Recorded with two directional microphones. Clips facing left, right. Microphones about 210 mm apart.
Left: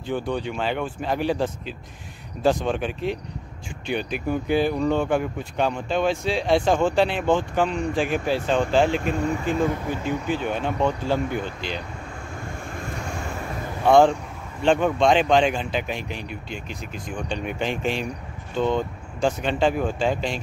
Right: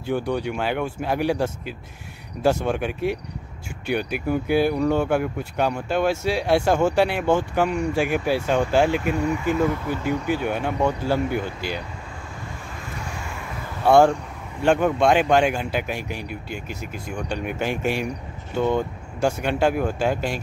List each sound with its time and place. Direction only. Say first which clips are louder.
0.0 s speech: right 2 dB; 10° right (ahead or behind)
10.0 s speech: right 2 dB; 10° right (ahead or behind)
12.7 s vehicle: left 3 dB; 50° left (ahead or behind)
13.8 s speech: even; 10° right (ahead or behind)